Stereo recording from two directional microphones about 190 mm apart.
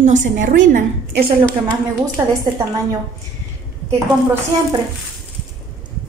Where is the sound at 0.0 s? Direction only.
40° right (ahead or behind).